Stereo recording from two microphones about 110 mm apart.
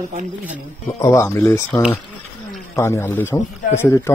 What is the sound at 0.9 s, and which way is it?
A man's voice, 30° left (ahead or behind).